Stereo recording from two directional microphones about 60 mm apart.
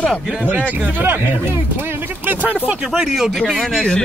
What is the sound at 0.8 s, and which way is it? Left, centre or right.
Speech, right.